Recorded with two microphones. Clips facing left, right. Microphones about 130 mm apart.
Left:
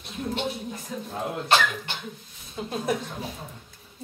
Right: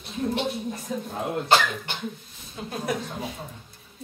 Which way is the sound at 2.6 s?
Centre (ahead or behind).